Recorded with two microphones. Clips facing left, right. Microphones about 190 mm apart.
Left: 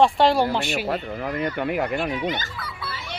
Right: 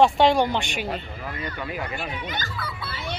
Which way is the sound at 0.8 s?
40° left (ahead or behind).